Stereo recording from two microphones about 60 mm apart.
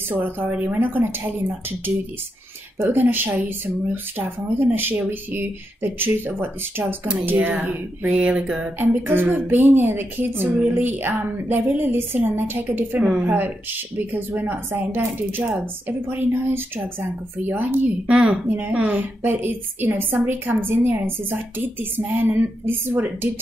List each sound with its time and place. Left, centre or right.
0.1 s a woman's voice: right
2.8 s a woman's voice: right
7.2 s a sound: right
8.7 s a woman's voice: right
18.0 s speech: centre
18.7 s a woman's voice: right